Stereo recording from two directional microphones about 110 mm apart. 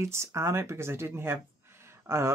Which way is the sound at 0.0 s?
25° right (ahead or behind).